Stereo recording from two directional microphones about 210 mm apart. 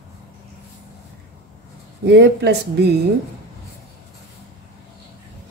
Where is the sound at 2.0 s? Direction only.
55° right (ahead or behind).